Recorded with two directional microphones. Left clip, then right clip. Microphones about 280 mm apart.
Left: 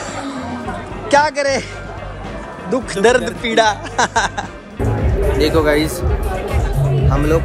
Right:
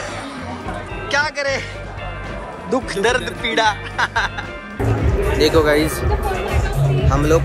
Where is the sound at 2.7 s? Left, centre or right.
Centre.